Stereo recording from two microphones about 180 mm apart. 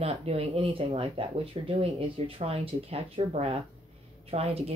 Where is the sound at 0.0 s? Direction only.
35° right (ahead or behind).